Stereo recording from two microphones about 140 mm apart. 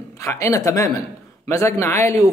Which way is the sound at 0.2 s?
20° left (ahead or behind).